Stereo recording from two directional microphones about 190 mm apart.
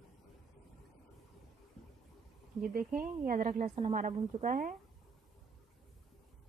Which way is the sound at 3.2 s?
45° right (ahead or behind).